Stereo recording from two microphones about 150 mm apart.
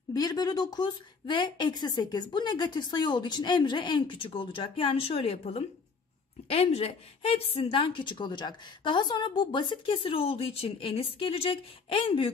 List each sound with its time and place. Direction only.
0.1 s a woman's voice: 25° left (ahead or behind)